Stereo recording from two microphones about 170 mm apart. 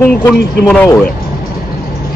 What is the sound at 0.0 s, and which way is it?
Speech, 10° left (ahead or behind).